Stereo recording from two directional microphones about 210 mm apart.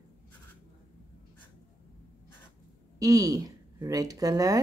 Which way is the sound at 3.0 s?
15° right (ahead or behind).